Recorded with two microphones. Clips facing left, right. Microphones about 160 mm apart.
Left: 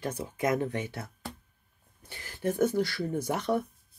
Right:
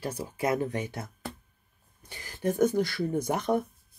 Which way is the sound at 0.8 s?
15° right (ahead or behind).